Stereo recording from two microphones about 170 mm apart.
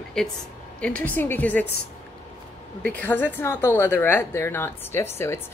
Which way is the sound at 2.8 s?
10° left (ahead or behind).